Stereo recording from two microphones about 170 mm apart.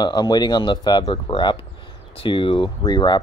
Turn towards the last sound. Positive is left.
turn(degrees=25)  # may be behind; listen again after turning